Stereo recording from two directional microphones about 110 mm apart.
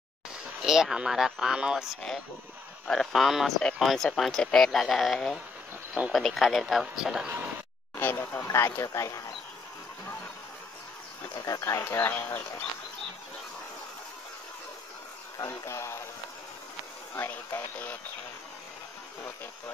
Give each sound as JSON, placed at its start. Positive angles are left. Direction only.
{"t": 0.7, "sound": "speech", "side_deg": -5}
{"t": 5.9, "sound": "speech", "side_deg": -10}
{"t": 8.0, "sound": "speech", "side_deg": 20}
{"t": 11.4, "sound": "speech", "side_deg": 30}
{"t": 15.3, "sound": "speech", "side_deg": 25}
{"t": 17.1, "sound": "speech", "side_deg": 20}